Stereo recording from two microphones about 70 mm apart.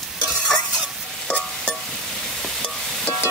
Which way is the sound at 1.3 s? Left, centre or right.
Centre.